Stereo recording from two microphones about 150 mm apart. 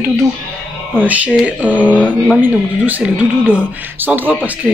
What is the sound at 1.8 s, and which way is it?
Speech, 10° left (ahead or behind).